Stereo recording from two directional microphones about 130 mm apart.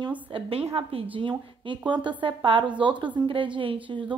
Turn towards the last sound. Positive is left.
turn(degrees=-40)  # may be behind; listen again after turning